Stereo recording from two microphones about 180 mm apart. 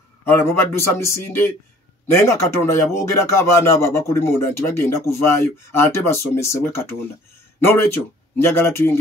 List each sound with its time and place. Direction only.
0.2 s speech: 15° left (ahead or behind)